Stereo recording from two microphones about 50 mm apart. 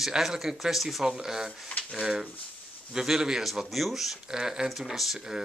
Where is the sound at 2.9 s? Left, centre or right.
Centre.